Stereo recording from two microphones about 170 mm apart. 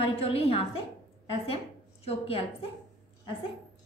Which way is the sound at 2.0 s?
35° left (ahead or behind).